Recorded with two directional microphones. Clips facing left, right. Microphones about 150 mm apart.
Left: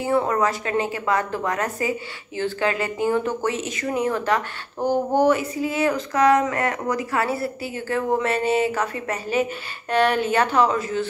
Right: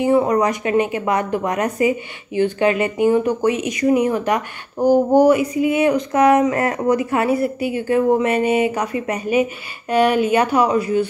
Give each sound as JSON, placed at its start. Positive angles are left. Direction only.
{"t": 0.0, "sound": "speech", "side_deg": -15}